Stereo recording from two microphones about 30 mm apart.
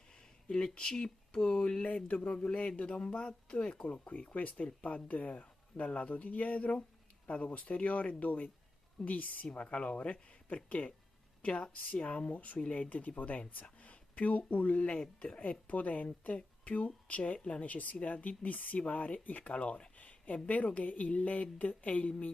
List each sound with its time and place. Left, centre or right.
0.1 s a sound: left
0.7 s speech: left
1.9 s speech: left
2.1 s speech: left
4.3 s speech: left
9.5 s speech: left
11.7 s speech: left
19.5 s a sound: left
20.4 s speech: left